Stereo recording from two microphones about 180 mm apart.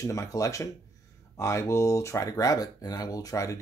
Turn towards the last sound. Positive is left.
turn(degrees=20)  # may be behind; listen again after turning